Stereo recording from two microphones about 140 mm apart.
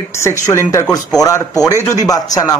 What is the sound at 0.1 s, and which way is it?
Speech, 20° left (ahead or behind).